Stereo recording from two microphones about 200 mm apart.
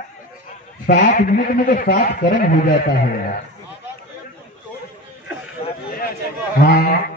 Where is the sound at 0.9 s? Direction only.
45° left (ahead or behind).